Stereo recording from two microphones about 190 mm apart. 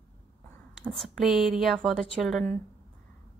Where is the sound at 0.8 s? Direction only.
Centre (ahead or behind).